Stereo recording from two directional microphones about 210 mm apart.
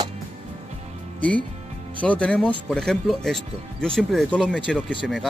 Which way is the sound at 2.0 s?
5° left (ahead or behind).